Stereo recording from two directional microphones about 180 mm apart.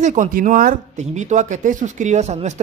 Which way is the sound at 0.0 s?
45° right (ahead or behind).